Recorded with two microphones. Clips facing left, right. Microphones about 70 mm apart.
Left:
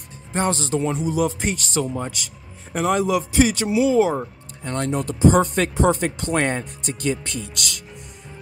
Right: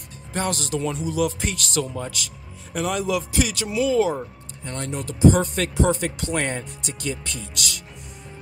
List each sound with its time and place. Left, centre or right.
0.3 s speech: left
4.6 s speech: left